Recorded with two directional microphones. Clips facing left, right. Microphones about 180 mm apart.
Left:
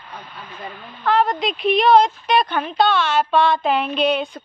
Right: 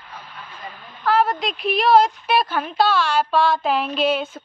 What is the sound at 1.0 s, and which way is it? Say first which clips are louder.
Speech: left 1 dB; 5° right (ahead or behind).